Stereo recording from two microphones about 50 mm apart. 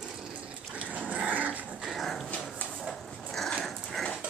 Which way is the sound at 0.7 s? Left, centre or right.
Right.